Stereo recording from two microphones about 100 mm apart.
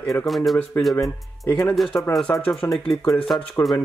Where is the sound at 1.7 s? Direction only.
Centre (ahead or behind).